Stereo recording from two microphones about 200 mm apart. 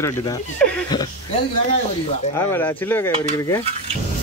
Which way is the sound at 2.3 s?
10° left (ahead or behind).